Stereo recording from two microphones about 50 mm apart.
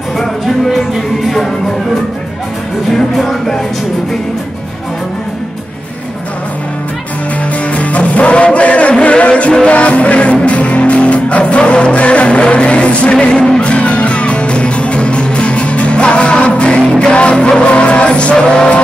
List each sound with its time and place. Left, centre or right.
0.7 s music: centre
2.9 s music: centre
7.7 s music: left